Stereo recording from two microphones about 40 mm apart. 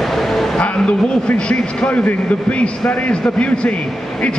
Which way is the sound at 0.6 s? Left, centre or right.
Left.